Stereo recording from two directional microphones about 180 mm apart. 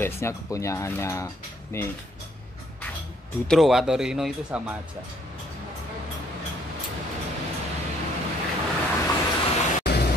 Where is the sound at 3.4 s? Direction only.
Centre (ahead or behind).